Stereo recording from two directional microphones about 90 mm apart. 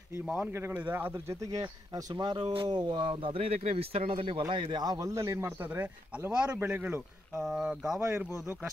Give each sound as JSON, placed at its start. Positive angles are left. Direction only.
{"t": 0.5, "sound": "speech", "side_deg": -30}
{"t": 2.0, "sound": "speech", "side_deg": -55}
{"t": 4.4, "sound": "a man's voice", "side_deg": -60}
{"t": 5.6, "sound": "speech", "side_deg": -20}
{"t": 7.3, "sound": "speech", "side_deg": -5}